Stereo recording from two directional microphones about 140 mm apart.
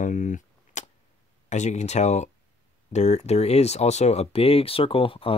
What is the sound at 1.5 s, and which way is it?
Speech, 55° left (ahead or behind).